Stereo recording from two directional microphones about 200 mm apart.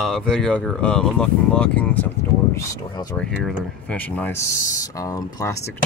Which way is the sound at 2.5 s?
20° left (ahead or behind).